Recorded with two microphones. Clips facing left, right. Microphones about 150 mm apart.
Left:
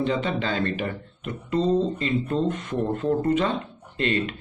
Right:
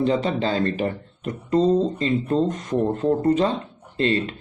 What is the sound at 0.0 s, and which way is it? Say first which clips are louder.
Speech: right 4 dB; 35° right (ahead or behind).